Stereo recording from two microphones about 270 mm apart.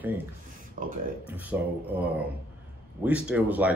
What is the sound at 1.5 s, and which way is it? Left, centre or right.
Speech, centre.